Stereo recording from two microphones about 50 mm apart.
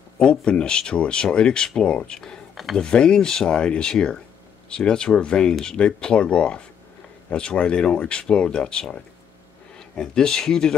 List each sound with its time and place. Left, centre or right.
0.2 s speech: left
2.5 s speech: centre
2.8 s speech: centre